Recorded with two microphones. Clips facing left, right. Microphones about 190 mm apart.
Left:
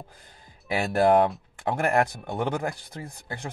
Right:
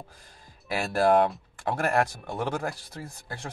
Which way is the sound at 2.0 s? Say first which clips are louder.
Left 2 dB; 20° left (ahead or behind).